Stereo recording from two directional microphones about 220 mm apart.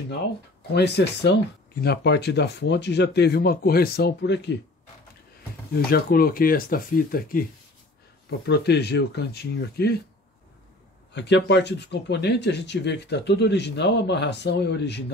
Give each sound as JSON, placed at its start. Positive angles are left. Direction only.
{"t": 0.7, "sound": "speech", "side_deg": 50}
{"t": 5.7, "sound": "speech", "side_deg": 45}
{"t": 11.1, "sound": "speech", "side_deg": 50}